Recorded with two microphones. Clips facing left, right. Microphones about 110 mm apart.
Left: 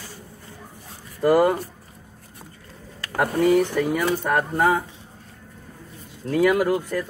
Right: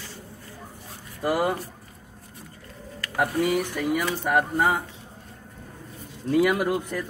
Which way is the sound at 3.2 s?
40° left (ahead or behind).